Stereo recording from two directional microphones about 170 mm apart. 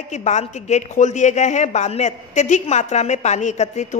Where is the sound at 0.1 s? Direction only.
40° left (ahead or behind).